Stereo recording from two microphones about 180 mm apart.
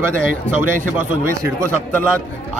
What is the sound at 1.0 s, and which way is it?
Speech, 15° right (ahead or behind).